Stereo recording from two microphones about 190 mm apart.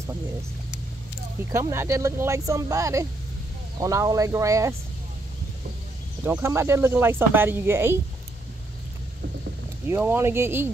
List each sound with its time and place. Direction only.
1.5 s speech: 15° right (ahead or behind)
6.2 s speech: 10° right (ahead or behind)
9.8 s speech: 10° right (ahead or behind)